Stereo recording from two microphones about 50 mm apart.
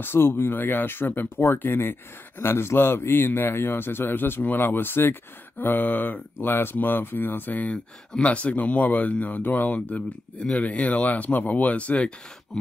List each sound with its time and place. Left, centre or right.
0.0 s speech: left